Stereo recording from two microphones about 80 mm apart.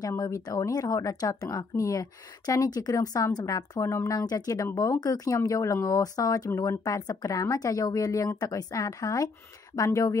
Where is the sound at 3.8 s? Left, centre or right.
Left.